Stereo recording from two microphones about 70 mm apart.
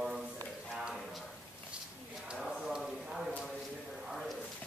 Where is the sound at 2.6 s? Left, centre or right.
Centre.